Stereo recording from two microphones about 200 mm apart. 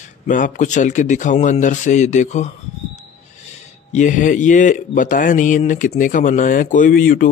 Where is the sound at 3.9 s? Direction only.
40° left (ahead or behind).